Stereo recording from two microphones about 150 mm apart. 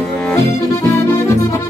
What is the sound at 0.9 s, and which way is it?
Music, 20° left (ahead or behind).